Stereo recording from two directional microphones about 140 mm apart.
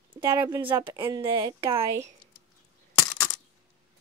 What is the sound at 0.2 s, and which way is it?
A woman's voice, 20° right (ahead or behind).